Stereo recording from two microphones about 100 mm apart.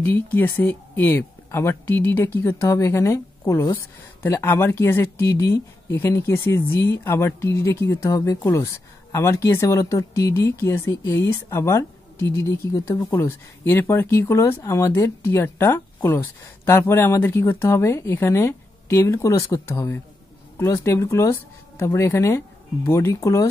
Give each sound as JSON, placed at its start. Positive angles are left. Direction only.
{"t": 0.0, "sound": "speech", "side_deg": 20}
{"t": 12.9, "sound": "speech", "side_deg": 50}
{"t": 13.2, "sound": "speech", "side_deg": 25}